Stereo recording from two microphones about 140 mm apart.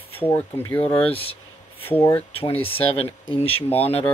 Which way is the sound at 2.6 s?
45° left (ahead or behind).